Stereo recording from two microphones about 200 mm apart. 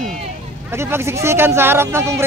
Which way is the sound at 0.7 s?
15° right (ahead or behind).